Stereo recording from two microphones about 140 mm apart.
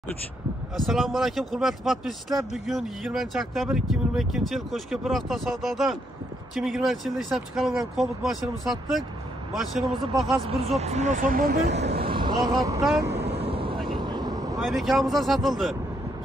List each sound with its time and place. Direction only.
0.7 s speech: centre (ahead or behind)
10.7 s speech: 50° right (ahead or behind); by 11.5 s 80° right
12.0 s vehicle: 35° right (ahead or behind)
13.1 s vehicle: 45° right (ahead or behind); by 14.6 s 25° right (ahead or behind)
14.6 s speech: centre (ahead or behind)